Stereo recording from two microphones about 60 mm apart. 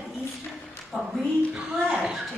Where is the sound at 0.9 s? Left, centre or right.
Centre.